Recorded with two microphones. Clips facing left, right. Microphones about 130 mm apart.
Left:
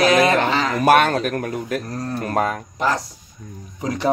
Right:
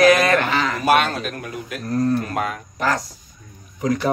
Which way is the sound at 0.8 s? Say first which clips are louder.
Left 5 dB; 50° left (ahead or behind).